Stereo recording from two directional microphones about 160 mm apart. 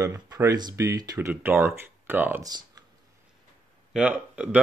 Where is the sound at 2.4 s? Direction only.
25° right (ahead or behind).